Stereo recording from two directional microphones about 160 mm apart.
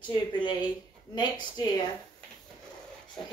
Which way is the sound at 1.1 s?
25° left (ahead or behind).